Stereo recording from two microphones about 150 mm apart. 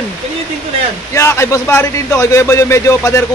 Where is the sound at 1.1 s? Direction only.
20° left (ahead or behind).